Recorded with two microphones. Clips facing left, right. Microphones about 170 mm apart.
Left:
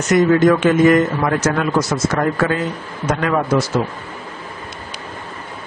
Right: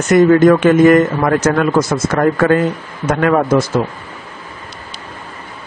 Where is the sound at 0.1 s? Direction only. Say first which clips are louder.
Right 4 dB; 55° right (ahead or behind).